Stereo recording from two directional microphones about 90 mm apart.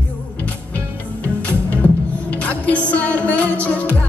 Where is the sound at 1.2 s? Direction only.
20° left (ahead or behind).